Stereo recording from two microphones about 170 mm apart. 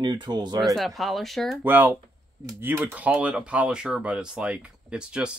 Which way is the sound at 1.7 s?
10° right (ahead or behind).